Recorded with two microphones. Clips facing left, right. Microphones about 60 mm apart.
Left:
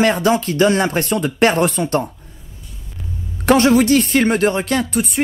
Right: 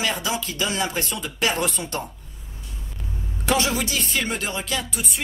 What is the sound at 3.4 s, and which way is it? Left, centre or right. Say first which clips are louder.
Speech: left 11 dB; left.